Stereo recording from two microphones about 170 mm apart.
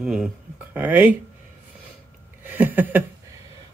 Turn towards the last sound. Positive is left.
turn(degrees=-10)  # may be behind; listen again after turning